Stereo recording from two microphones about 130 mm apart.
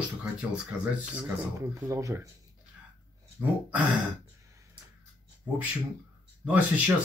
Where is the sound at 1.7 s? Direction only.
25° right (ahead or behind).